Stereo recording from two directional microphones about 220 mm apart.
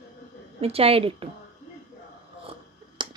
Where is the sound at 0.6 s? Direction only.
25° right (ahead or behind).